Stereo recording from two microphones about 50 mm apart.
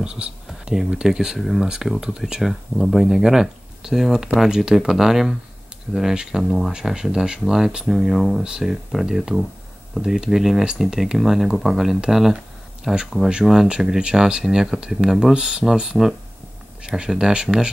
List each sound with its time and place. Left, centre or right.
0.0 s speech: right
0.5 s a sound: centre
1.0 s speech: centre
8.5 s speech: centre